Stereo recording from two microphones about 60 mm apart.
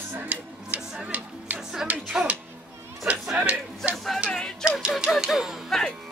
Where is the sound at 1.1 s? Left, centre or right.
Right.